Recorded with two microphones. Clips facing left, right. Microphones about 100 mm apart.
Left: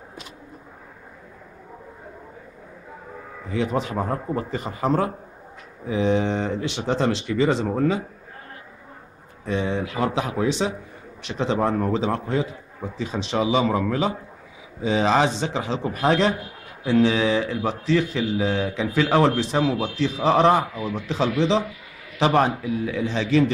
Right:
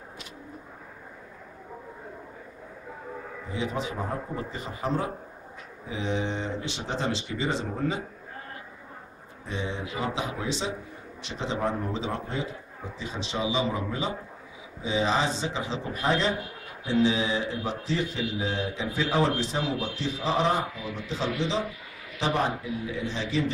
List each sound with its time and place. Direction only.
3.7 s speech: 60° left (ahead or behind)
9.5 s a man's voice: 65° left (ahead or behind)